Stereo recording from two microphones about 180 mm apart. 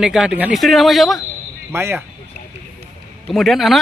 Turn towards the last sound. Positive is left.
turn(degrees=0)  # may be behind; listen again after turning